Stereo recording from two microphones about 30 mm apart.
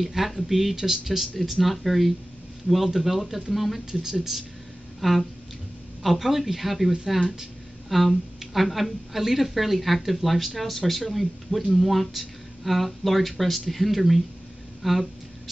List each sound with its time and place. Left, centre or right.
0.0 s speech: centre
3.9 s speech: centre
5.0 s a woman's voice: centre
14.8 s a sound: centre